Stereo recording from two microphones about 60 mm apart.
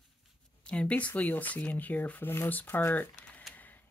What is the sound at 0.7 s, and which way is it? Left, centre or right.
Speech, left.